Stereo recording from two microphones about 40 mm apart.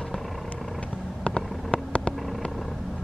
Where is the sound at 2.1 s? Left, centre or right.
Centre.